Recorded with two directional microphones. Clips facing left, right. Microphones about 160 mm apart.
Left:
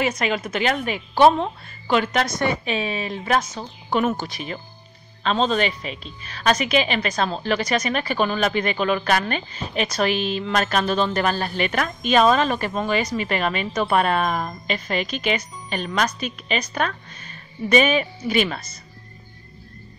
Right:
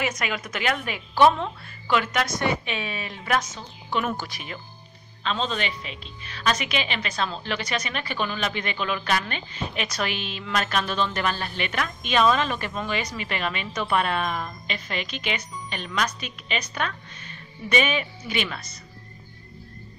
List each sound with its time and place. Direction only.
0.0 s a woman's voice: 30° left (ahead or behind)
4.0 s a woman's voice: 25° left (ahead or behind)
5.2 s a woman's voice: 40° left (ahead or behind)